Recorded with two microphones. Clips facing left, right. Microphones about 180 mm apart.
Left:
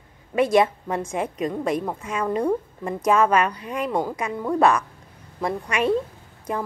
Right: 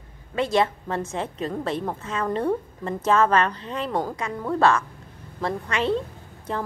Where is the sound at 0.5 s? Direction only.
15° left (ahead or behind).